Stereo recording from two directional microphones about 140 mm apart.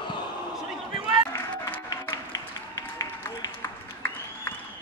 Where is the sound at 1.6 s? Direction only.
20° left (ahead or behind).